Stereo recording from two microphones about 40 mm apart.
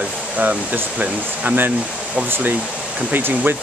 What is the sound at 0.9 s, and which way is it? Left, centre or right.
Speech, right.